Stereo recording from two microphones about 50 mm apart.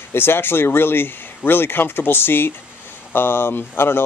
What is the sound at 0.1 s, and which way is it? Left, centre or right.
Speech, left.